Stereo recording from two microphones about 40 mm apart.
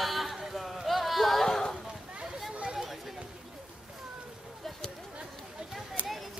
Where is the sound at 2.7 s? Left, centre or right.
Centre.